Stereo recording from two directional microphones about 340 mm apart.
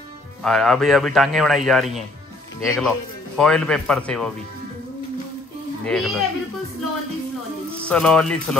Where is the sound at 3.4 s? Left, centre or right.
Centre.